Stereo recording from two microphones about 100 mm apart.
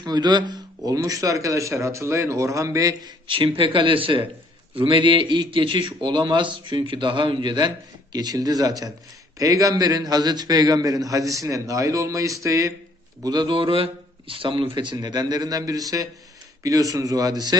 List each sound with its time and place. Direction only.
0.0 s a man's voice: 50° right (ahead or behind)
3.3 s a man's voice: 60° right (ahead or behind); by 12.7 s 30° right (ahead or behind)
13.2 s a man's voice: 45° right (ahead or behind)